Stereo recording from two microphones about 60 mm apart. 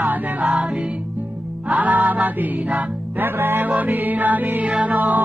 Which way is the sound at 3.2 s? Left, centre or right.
Right.